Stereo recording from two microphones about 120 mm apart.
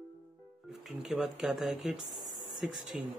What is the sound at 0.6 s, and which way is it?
Speech, 5° right (ahead or behind).